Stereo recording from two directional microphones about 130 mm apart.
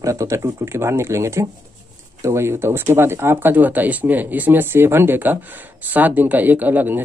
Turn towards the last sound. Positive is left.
turn(degrees=-15)  # may be behind; listen again after turning